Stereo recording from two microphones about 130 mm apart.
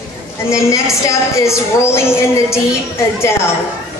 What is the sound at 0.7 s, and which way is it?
Speech, 25° left (ahead or behind).